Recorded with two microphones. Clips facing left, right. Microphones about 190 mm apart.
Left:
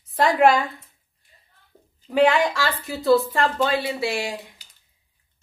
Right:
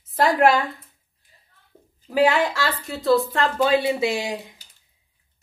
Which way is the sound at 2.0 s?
5° right (ahead or behind).